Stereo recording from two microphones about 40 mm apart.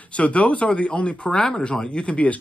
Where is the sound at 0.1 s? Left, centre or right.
Left.